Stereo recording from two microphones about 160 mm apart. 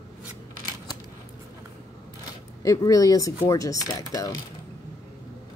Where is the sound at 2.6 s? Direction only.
20° left (ahead or behind).